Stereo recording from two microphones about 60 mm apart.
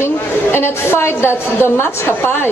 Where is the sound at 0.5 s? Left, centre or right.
Left.